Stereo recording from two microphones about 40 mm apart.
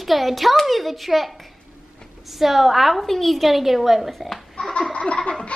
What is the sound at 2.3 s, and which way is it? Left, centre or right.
A woman's voice, centre.